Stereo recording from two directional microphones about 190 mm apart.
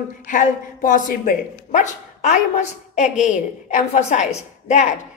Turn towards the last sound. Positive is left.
turn(degrees=40)  # may be behind; listen again after turning